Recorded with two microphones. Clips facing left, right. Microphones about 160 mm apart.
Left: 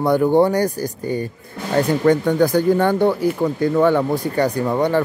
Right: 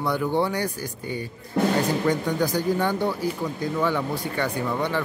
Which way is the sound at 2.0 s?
60° left (ahead or behind).